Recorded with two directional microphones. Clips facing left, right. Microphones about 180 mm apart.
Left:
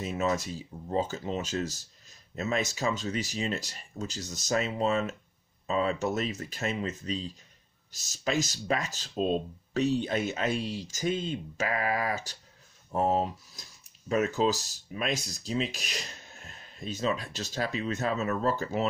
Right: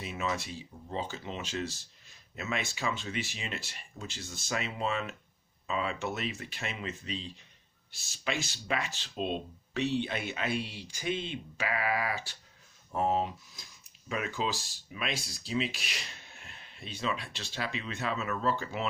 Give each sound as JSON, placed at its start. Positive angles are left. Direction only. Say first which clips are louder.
{"t": 0.0, "sound": "speech", "louder": "left 6 dB", "side_deg": 40}